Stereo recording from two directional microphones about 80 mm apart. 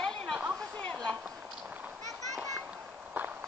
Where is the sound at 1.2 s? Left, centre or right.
Centre.